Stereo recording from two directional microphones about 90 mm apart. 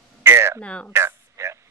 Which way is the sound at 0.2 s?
30° right (ahead or behind).